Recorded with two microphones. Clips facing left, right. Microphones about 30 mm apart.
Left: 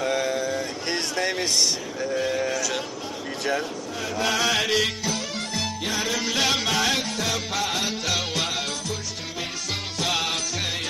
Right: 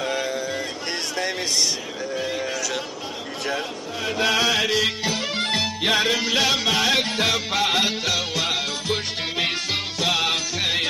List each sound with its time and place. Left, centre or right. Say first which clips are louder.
0.0 s a sound: left 1 dB; centre
2.1 s a sound: left 2 dB; centre
4.0 s mantra: right 3 dB; centre
4.6 s music: right 2 dB; centre
6.1 s music: right 4 dB; centre
6.4 s music: even; centre
7.0 s music: right 5 dB; right
9.9 s music: right 3 dB; centre